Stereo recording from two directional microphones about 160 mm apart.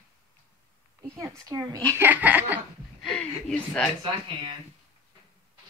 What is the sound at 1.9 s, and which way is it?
Laughter, 15° right (ahead or behind).